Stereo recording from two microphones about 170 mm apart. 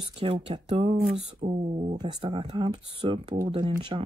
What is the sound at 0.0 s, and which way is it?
Speech, 30° right (ahead or behind).